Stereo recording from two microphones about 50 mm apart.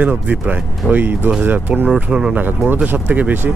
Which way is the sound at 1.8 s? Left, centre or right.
Centre.